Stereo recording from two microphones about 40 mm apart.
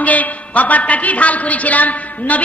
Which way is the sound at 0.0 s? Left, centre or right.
Left.